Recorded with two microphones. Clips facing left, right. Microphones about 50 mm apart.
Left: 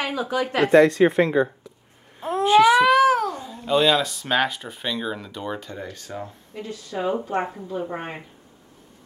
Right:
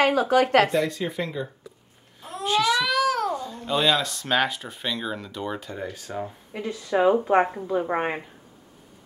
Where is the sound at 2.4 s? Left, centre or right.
Left.